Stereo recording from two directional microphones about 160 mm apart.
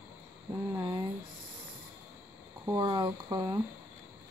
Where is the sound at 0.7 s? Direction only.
30° right (ahead or behind).